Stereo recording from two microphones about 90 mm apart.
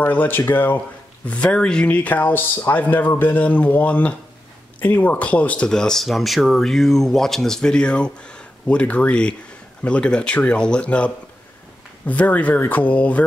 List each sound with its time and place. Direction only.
0.0 s speech: 20° left (ahead or behind)
12.1 s speech: 15° left (ahead or behind)